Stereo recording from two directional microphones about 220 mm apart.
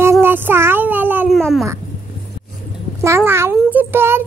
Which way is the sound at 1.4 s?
Centre (ahead or behind).